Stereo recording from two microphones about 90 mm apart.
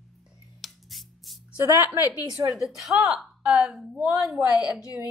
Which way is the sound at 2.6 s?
5° right (ahead or behind).